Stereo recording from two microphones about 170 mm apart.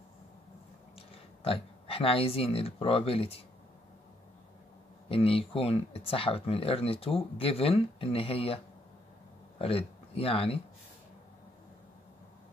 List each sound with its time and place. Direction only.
0.9 s speech: 35° left (ahead or behind)
5.1 s speech: 35° left (ahead or behind)
9.6 s speech: 35° left (ahead or behind)